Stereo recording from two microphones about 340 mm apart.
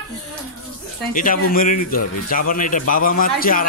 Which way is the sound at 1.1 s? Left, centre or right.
Left.